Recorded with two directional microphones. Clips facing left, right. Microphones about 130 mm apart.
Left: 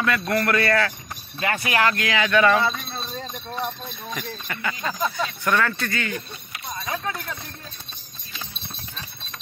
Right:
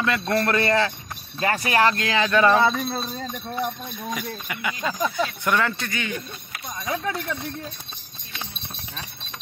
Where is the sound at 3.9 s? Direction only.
10° right (ahead or behind).